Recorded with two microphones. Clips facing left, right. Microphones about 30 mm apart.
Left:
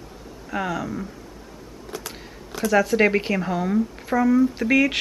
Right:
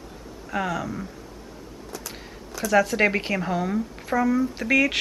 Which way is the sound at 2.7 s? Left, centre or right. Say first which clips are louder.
Left 2 dB; centre.